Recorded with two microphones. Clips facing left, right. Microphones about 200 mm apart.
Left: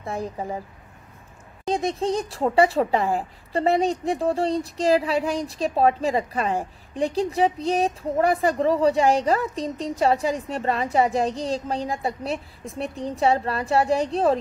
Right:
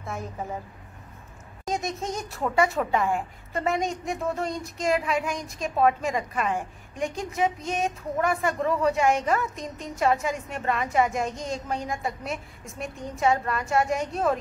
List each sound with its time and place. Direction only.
0.0 s a woman's voice: 35° left (ahead or behind)
1.7 s speech: 30° left (ahead or behind)